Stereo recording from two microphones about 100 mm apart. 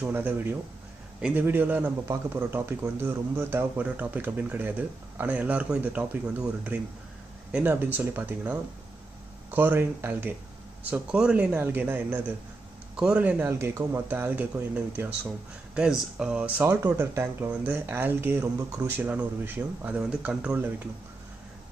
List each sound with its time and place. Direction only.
0.0 s a man's voice: 15° right (ahead or behind)
11.5 s speech: 20° right (ahead or behind)
12.9 s a man's voice: 10° right (ahead or behind)